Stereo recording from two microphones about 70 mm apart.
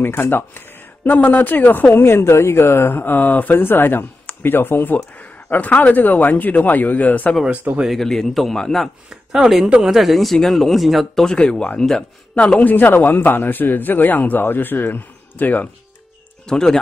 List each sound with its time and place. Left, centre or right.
0.0 s speech: left
7.9 s speech: centre
9.1 s speech: centre
11.2 s speech: centre
16.4 s speech: centre